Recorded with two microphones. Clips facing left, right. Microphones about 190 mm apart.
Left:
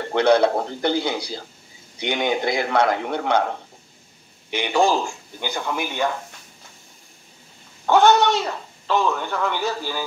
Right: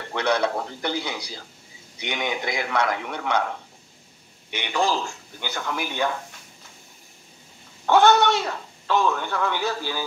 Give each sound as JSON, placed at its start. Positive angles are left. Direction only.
{"t": 0.0, "sound": "a man's voice", "side_deg": 30}
{"t": 4.8, "sound": "speech", "side_deg": 15}
{"t": 7.8, "sound": "speech", "side_deg": 0}
{"t": 8.8, "sound": "speech", "side_deg": 15}